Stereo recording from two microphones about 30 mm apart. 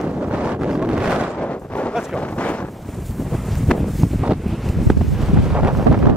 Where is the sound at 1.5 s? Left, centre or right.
Left.